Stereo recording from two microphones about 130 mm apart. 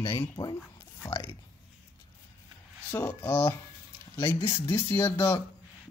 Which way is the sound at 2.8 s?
20° left (ahead or behind).